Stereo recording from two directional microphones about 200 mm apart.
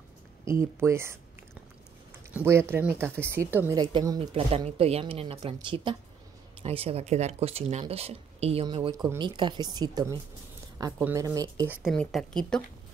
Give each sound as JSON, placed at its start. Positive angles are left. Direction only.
{"t": 0.5, "sound": "speech", "side_deg": -15}
{"t": 2.3, "sound": "speech", "side_deg": -10}
{"t": 8.9, "sound": "speech", "side_deg": -20}
{"t": 11.9, "sound": "speech", "side_deg": 5}